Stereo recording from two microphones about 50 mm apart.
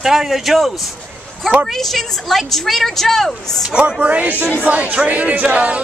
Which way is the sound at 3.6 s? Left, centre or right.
Right.